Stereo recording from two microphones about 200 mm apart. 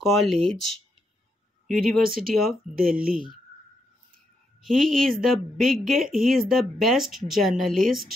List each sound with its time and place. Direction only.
0.0 s speech: centre (ahead or behind)
2.0 s speech: 45° right (ahead or behind)
4.6 s speech: centre (ahead or behind)